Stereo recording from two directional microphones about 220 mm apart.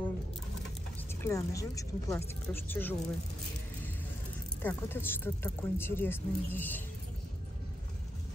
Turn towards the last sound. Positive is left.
turn(degrees=10)  # may be behind; listen again after turning